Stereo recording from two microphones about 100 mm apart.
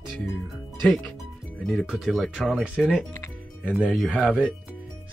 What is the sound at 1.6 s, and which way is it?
Speech, 10° left (ahead or behind).